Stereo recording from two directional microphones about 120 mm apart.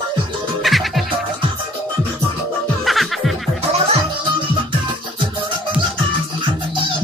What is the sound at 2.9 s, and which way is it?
Music, centre (ahead or behind).